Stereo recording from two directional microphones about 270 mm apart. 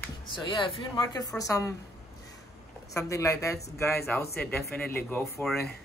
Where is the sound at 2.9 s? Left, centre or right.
Centre.